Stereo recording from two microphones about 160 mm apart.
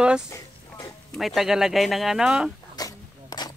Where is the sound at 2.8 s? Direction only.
25° left (ahead or behind).